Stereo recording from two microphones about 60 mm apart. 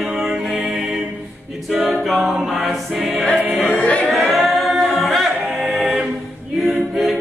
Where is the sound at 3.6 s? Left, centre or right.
Left.